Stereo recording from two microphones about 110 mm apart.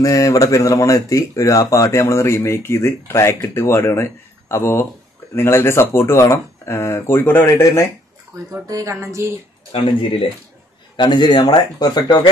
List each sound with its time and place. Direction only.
0.0 s speech: 30° left (ahead or behind)
8.6 s speech: 30° right (ahead or behind)
9.8 s speech: 55° left (ahead or behind)
11.0 s speech: 40° left (ahead or behind)